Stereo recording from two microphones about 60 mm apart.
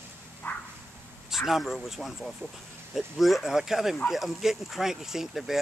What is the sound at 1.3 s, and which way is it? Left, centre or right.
Speech, centre.